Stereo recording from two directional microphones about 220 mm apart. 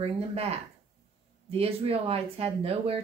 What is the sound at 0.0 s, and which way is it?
Speech, 25° right (ahead or behind).